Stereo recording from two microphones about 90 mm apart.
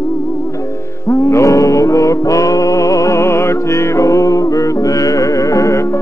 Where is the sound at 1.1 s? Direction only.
30° left (ahead or behind).